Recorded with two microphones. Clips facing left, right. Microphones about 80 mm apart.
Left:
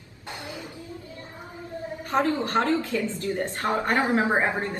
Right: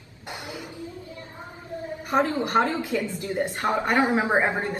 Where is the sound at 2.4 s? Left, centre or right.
Centre.